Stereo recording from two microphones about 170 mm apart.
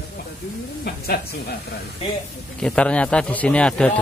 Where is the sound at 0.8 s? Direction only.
65° left (ahead or behind).